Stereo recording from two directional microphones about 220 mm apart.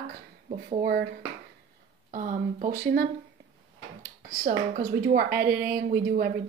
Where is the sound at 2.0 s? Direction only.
35° right (ahead or behind).